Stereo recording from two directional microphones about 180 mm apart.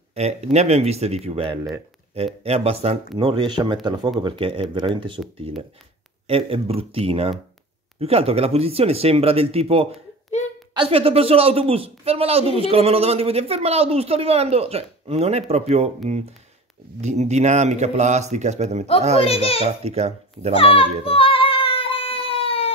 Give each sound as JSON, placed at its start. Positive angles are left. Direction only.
{"t": 0.1, "sound": "speech", "side_deg": -35}
{"t": 6.2, "sound": "speech", "side_deg": -30}
{"t": 19.2, "sound": "a child's voice", "side_deg": 35}
{"t": 19.8, "sound": "speech", "side_deg": -35}
{"t": 20.5, "sound": "a sound", "side_deg": 30}